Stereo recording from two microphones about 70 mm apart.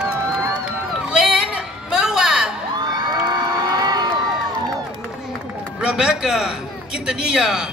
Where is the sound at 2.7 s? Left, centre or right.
Right.